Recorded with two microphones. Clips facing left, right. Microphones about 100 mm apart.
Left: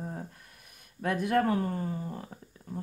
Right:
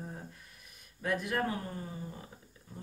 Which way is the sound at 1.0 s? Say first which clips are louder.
Left 6 dB; 50° left (ahead or behind).